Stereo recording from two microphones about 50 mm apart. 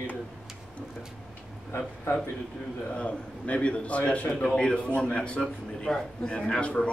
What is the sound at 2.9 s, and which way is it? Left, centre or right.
A man's voice, left.